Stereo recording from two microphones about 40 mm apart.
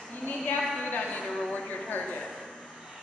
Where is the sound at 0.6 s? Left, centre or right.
Centre.